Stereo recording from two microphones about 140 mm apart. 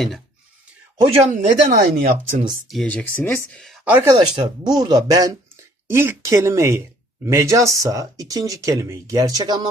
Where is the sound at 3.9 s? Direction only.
15° right (ahead or behind).